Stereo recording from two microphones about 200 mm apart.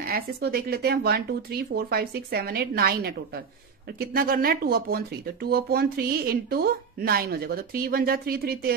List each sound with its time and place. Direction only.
0.0 s speech: 50° right (ahead or behind)